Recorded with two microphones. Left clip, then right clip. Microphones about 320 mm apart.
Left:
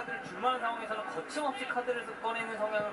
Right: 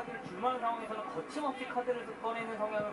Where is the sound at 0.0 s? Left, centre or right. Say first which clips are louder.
Left 2 dB; centre.